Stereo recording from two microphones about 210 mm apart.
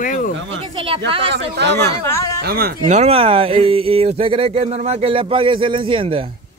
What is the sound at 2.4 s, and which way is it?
Speech, 45° right (ahead or behind).